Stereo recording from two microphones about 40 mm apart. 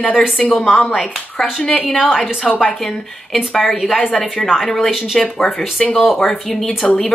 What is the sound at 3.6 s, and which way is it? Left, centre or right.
Speech, centre.